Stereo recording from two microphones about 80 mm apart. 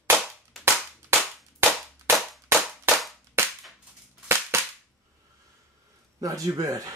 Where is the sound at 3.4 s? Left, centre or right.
Right.